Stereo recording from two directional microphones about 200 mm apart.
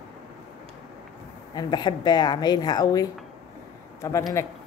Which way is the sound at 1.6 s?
20° left (ahead or behind).